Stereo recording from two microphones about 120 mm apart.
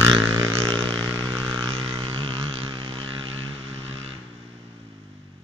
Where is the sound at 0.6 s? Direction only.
45° right (ahead or behind).